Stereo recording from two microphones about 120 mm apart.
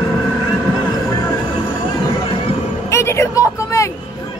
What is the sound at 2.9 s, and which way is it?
Vehicle, 25° left (ahead or behind).